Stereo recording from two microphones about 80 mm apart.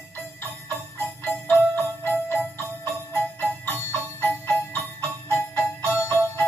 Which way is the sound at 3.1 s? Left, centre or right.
Left.